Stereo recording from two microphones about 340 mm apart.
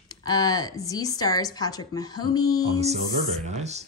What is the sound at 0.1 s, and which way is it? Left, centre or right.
Speech, centre.